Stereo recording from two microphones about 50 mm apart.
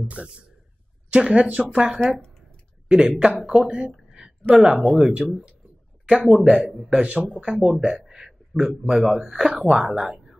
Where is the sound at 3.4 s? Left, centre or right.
Centre.